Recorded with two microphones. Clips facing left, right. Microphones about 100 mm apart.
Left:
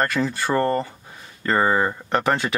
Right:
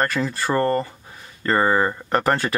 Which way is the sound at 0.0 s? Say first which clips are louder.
Even; centre (ahead or behind).